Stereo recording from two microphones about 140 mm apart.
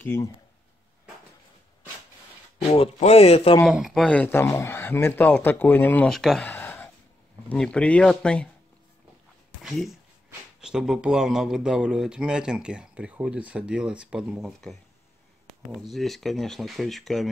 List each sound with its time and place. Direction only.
0.0 s speech: 15° left (ahead or behind)
2.6 s speech: 35° left (ahead or behind)
3.6 s speech: centre (ahead or behind)
6.0 s speech: centre (ahead or behind)
6.5 s a sound: 15° left (ahead or behind)
7.4 s speech: 5° left (ahead or behind)
9.6 s speech: centre (ahead or behind)
15.9 s speech: centre (ahead or behind)